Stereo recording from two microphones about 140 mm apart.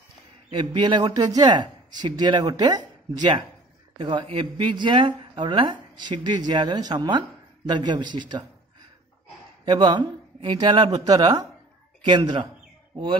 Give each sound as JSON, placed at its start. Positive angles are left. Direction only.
{"t": 0.5, "sound": "speech", "side_deg": -35}
{"t": 9.7, "sound": "speech", "side_deg": -35}